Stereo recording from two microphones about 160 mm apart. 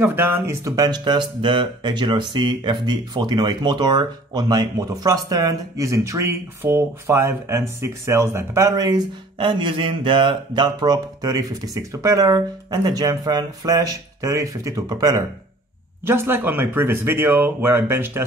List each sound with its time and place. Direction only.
0.0 s speech: 15° right (ahead or behind)